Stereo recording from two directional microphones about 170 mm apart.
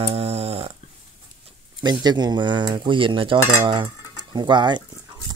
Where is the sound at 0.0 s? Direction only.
35° right (ahead or behind).